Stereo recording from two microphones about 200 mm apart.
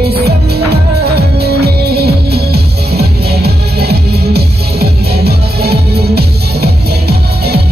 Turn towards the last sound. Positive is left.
turn(degrees=-55)  # may be behind; listen again after turning